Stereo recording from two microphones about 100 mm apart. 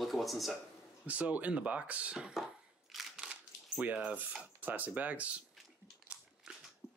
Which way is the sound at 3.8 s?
15° right (ahead or behind).